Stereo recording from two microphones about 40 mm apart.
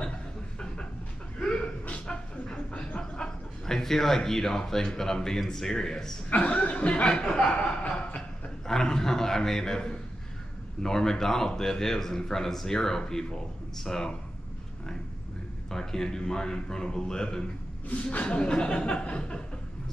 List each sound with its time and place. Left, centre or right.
1.4 s a sound: left
3.0 s a man's voice: centre
6.3 s speech: left
7.1 s a man's voice: centre
8.6 s a man's voice: centre
15.7 s a man's voice: centre
17.8 s speech: left
18.4 s speech: left